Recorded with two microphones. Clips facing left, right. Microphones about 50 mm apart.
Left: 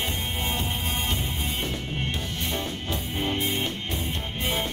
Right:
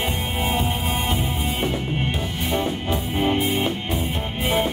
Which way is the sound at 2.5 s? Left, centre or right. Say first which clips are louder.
Right 9 dB; centre.